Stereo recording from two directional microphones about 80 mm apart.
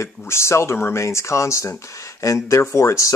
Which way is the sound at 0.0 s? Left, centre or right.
Left.